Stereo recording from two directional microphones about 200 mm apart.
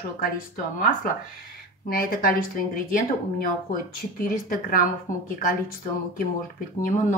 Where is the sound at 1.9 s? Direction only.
45° left (ahead or behind).